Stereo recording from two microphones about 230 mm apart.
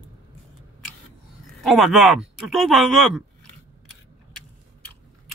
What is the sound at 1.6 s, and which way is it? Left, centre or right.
Speech, centre.